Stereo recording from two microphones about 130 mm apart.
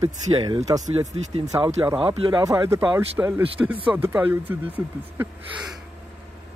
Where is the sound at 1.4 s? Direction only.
25° right (ahead or behind).